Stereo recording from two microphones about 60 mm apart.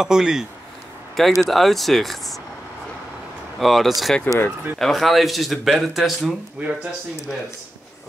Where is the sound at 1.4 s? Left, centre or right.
Centre.